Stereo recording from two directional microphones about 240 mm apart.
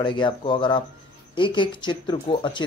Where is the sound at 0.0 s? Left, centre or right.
Left.